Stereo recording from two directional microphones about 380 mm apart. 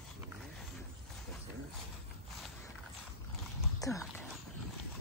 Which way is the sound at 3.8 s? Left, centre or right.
Centre.